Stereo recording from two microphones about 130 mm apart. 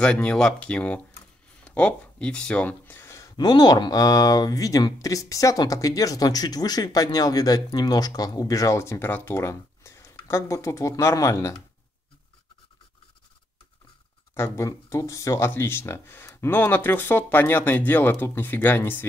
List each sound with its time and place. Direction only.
0.0 s speech: 10° left (ahead or behind); by 11.5 s 25° left (ahead or behind)
14.3 s speech: 20° left (ahead or behind)